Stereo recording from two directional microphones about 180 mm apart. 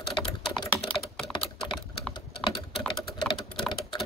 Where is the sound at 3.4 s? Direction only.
25° left (ahead or behind).